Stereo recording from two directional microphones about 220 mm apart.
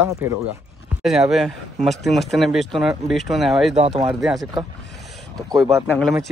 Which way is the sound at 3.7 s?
25° right (ahead or behind).